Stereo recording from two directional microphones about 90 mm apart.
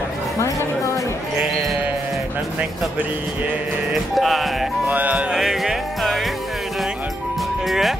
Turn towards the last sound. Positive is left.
turn(degrees=0)  # may be behind; listen again after turning